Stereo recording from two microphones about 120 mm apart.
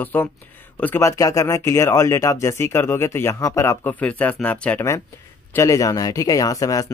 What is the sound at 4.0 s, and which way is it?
Speech, 10° left (ahead or behind).